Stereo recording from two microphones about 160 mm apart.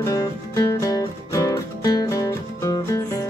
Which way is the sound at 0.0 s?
20° left (ahead or behind).